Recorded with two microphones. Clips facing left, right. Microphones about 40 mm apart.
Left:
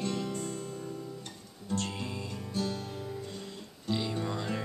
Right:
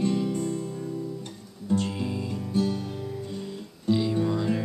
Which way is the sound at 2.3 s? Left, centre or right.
Centre.